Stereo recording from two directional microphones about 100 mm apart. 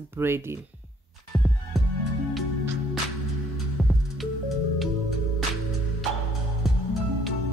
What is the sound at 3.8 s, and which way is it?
Music, 5° right (ahead or behind).